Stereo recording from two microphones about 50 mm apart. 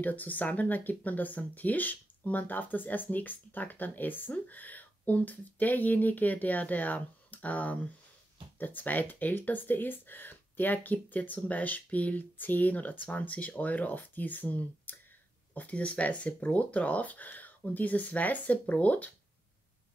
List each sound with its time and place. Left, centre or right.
0.0 s speech: left